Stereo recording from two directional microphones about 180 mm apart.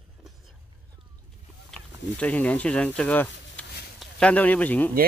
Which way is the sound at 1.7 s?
5° left (ahead or behind).